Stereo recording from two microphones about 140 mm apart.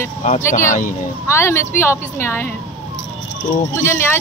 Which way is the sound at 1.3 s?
20° left (ahead or behind).